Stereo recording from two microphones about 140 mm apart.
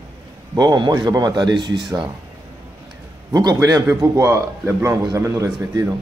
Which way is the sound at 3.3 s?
25° right (ahead or behind).